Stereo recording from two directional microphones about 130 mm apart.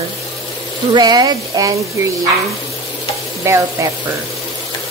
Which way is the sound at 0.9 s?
30° right (ahead or behind).